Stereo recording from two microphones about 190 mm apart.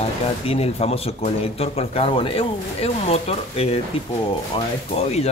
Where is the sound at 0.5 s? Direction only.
30° left (ahead or behind).